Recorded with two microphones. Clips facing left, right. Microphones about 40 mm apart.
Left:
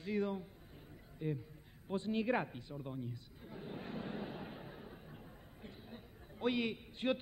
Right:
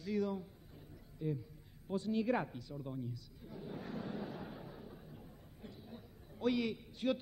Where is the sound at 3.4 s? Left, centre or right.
Left.